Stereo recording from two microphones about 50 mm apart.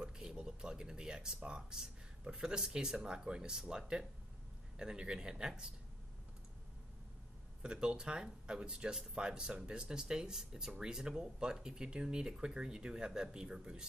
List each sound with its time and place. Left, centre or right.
0.0 s speech: centre
7.6 s speech: centre